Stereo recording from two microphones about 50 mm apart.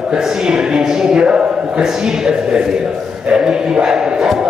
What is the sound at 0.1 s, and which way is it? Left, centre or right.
A man's voice, centre.